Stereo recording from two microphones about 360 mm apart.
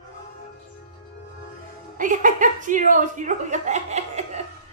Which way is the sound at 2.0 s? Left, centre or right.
Right.